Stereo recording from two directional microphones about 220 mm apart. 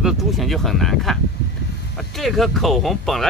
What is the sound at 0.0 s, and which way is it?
Speech, centre (ahead or behind).